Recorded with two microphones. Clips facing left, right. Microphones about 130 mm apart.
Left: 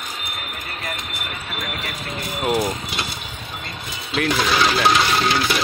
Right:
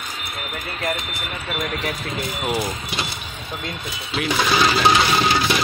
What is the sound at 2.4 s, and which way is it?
Speech, 5° left (ahead or behind).